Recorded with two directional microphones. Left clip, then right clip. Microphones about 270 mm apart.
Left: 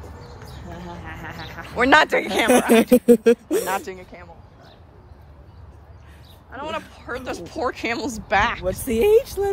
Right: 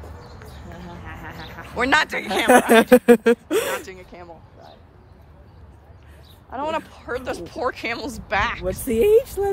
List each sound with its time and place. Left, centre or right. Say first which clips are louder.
0.7 s a sound: left 3 dB; left
1.8 s speech: left 4 dB; centre
6.5 s speech: right 4 dB; centre
8.9 s speech: even; centre